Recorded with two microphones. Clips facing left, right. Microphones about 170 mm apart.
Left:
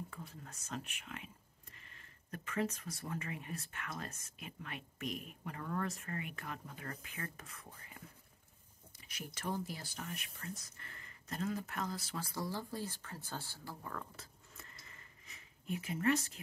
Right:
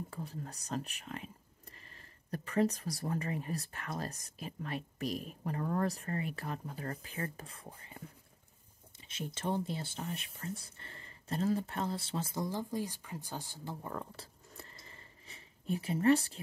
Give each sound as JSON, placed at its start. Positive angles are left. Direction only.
{"t": 0.1, "sound": "speech", "side_deg": -35}
{"t": 9.0, "sound": "speech", "side_deg": -25}